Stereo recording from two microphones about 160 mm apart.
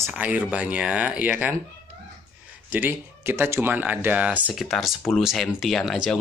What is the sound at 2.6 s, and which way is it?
Speech, 10° right (ahead or behind).